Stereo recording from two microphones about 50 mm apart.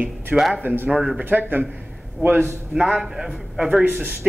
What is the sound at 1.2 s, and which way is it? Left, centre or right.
A man's voice, right.